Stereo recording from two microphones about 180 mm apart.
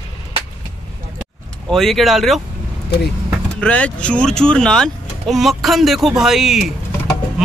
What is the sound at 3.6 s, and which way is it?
Speech, 5° left (ahead or behind).